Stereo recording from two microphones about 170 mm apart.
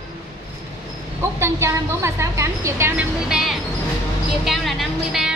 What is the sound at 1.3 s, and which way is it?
Speech, 15° right (ahead or behind).